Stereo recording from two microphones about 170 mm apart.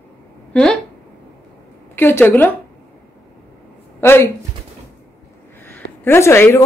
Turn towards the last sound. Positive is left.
turn(degrees=15)  # may be behind; listen again after turning